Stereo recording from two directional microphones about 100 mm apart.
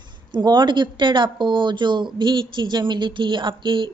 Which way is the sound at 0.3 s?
45° right (ahead or behind).